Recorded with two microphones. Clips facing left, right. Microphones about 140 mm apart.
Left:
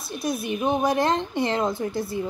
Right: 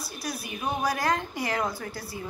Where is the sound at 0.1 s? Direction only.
25° left (ahead or behind).